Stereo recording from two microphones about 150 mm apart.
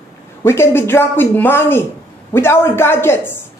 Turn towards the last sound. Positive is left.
turn(degrees=15)  # may be behind; listen again after turning